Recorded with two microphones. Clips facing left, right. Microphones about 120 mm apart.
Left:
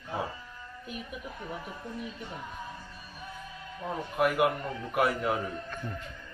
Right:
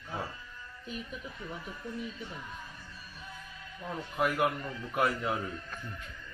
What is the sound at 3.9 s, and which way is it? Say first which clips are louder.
A man's voice: left 3 dB; 10° left (ahead or behind).